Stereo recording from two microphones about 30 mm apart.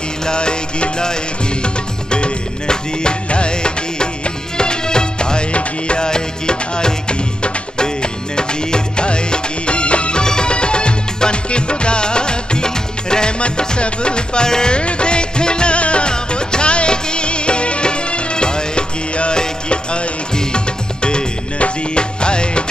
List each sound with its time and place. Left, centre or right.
0.2 s music: left
5.5 s music: left
5.9 s music: left
10.2 s music: left